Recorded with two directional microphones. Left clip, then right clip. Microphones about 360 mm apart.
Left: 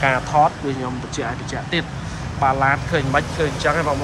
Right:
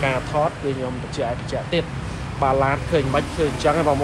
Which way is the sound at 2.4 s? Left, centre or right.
Centre.